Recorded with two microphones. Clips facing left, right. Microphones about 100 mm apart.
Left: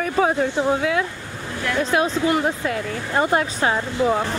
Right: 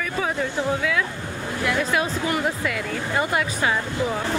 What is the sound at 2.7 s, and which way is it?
Speech, 35° left (ahead or behind).